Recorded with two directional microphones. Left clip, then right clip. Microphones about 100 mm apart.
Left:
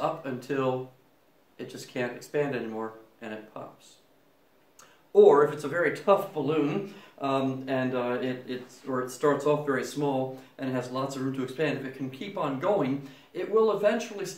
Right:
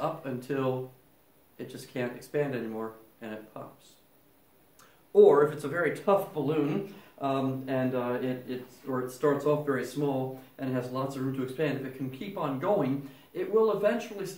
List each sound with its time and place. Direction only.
0.0 s speech: 5° right (ahead or behind)
4.7 s speech: 5° right (ahead or behind); by 14.3 s 25° left (ahead or behind)